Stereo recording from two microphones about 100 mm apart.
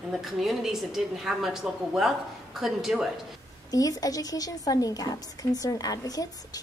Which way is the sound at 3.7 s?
35° left (ahead or behind).